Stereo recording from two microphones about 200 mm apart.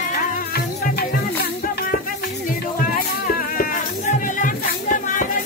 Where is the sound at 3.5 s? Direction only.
40° left (ahead or behind).